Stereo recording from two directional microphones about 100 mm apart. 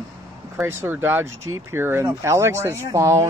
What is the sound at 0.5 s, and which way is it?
Speech, 25° right (ahead or behind).